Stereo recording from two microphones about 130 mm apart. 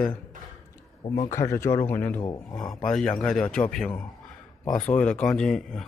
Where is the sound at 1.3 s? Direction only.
20° left (ahead or behind).